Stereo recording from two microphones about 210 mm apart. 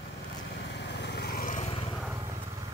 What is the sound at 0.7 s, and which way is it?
Vehicle, 55° left (ahead or behind).